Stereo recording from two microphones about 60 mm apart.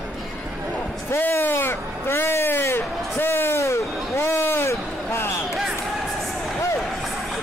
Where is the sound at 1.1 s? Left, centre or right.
Left.